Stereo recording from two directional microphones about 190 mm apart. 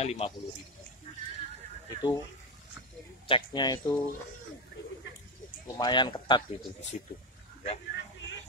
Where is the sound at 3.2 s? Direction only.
25° left (ahead or behind).